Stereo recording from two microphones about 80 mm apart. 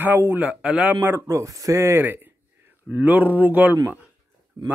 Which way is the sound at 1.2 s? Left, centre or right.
Right.